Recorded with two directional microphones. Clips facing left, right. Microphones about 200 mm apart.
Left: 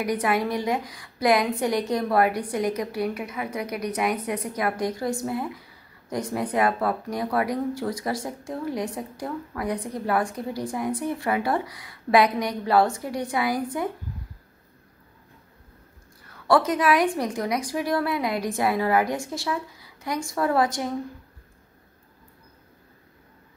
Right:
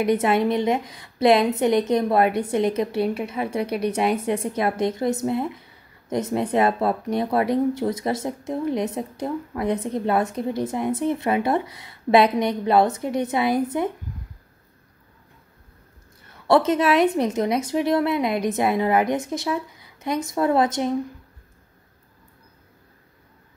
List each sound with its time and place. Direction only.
0.0 s a woman's voice: 25° right (ahead or behind)
16.3 s a woman's voice: 25° right (ahead or behind)